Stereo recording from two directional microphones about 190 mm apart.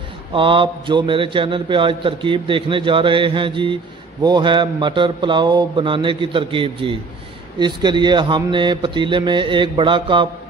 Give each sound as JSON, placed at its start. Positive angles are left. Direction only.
{"t": 0.3, "sound": "a man's voice", "side_deg": -25}